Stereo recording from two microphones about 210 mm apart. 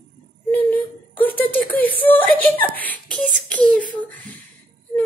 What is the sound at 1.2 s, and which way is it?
Speech, 10° left (ahead or behind).